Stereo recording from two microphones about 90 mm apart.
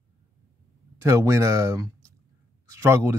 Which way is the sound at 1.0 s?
30° right (ahead or behind).